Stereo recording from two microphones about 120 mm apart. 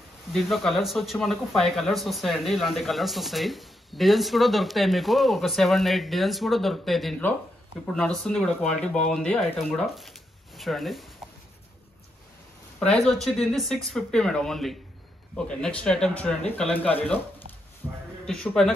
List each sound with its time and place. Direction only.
0.3 s speech: centre (ahead or behind)
12.7 s speech: 5° left (ahead or behind)
17.8 s a sound: 20° right (ahead or behind)
18.2 s speech: 5° left (ahead or behind)